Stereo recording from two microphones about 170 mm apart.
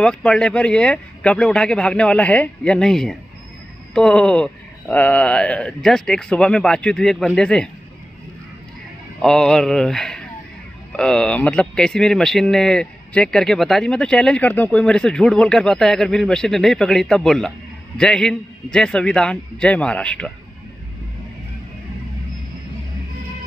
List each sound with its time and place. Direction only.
0.0 s speech: 5° left (ahead or behind)
9.2 s speech: 5° left (ahead or behind)